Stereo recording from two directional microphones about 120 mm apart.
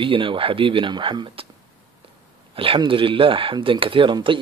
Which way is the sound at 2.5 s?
45° right (ahead or behind).